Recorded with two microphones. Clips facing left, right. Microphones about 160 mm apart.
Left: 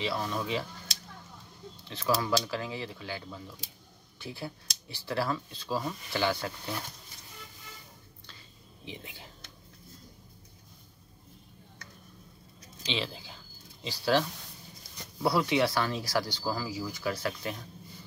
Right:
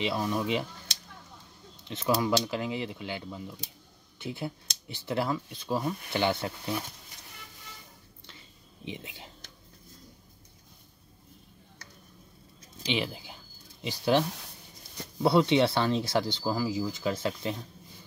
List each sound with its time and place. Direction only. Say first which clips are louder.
0.0 s speech: right 3 dB; 20° right (ahead or behind)
8.8 s speech: right 4 dB; 20° right (ahead or behind)
12.8 s speech: right 4 dB; 15° right (ahead or behind)
15.2 s speech: right 4 dB; 25° right (ahead or behind)